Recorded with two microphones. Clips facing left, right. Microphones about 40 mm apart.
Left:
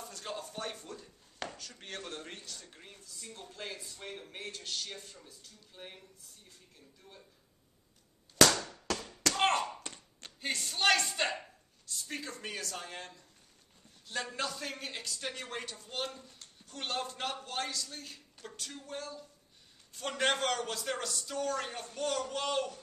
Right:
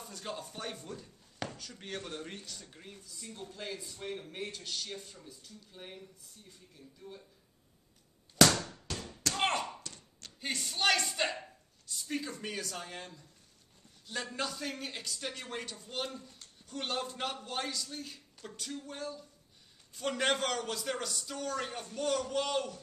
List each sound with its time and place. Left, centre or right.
0.0 s speech: centre
8.9 s tap: left
9.4 s tap: centre
10.4 s speech: centre
14.3 s speech: centre